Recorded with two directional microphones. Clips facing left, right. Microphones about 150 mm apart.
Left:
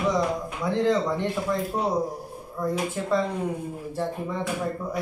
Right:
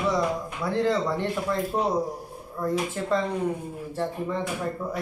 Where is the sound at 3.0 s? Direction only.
10° left (ahead or behind).